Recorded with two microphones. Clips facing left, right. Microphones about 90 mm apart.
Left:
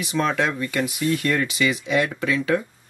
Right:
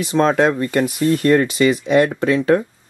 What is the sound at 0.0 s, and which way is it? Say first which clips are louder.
Speech: right 7 dB; 35° right (ahead or behind).